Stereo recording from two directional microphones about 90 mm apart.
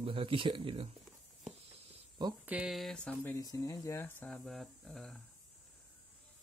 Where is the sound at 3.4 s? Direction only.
45° left (ahead or behind).